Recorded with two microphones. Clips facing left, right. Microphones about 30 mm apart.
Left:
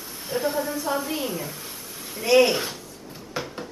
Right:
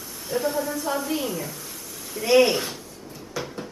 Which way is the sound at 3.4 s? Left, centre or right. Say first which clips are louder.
Even; left.